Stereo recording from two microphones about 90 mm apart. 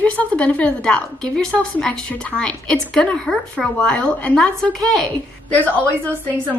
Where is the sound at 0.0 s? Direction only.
15° left (ahead or behind).